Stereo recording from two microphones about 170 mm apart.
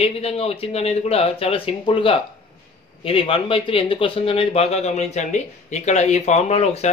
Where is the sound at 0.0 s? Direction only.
35° left (ahead or behind).